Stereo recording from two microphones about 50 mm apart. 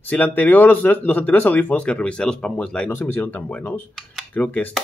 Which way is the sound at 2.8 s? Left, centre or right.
Left.